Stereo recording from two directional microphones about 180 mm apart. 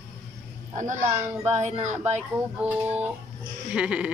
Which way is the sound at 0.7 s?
45° right (ahead or behind).